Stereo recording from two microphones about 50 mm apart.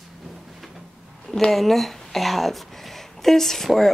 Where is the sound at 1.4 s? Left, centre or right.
Centre.